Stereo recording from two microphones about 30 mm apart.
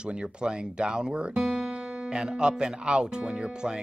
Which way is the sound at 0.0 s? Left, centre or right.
Right.